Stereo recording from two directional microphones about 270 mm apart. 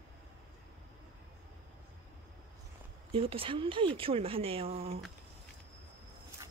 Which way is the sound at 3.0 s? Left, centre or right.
Right.